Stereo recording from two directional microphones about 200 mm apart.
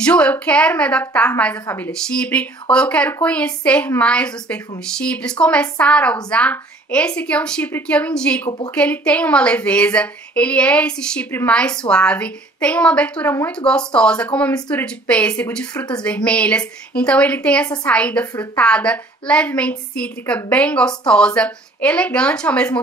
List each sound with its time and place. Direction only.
0.0 s a woman's voice: 5° left (ahead or behind)
15.7 s speech: 20° left (ahead or behind)
16.3 s a woman's voice: 5° left (ahead or behind)
18.3 s a woman's voice: 20° left (ahead or behind)
18.6 s a woman's voice: 5° left (ahead or behind)